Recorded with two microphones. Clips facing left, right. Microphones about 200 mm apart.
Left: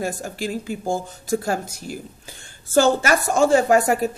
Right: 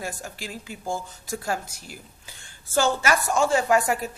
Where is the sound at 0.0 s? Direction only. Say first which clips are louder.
Left 8 dB; 45° left (ahead or behind).